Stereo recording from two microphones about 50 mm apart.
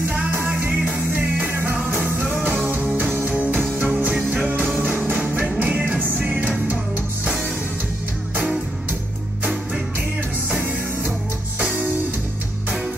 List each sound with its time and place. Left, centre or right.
0.8 s music: right
1.5 s music: right
3.3 s music: right
5.4 s music: right